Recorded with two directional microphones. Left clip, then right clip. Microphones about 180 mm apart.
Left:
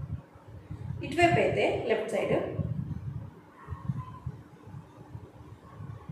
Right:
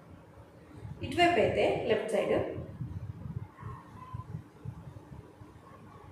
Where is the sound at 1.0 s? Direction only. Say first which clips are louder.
Left 1 dB; 5° left (ahead or behind).